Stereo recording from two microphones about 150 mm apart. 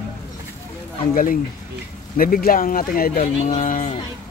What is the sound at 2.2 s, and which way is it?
Speech, 75° left (ahead or behind).